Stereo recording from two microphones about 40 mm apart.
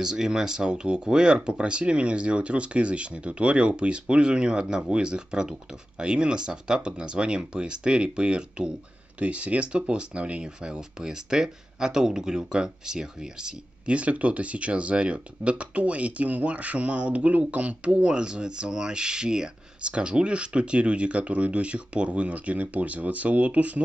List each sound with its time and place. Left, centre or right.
0.0 s speech: centre
13.8 s speech: right